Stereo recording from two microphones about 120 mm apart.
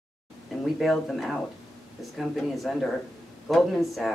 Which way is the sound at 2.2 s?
Centre (ahead or behind).